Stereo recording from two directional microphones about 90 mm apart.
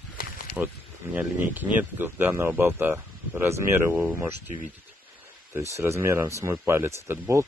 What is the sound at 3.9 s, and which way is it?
Speech, 10° right (ahead or behind).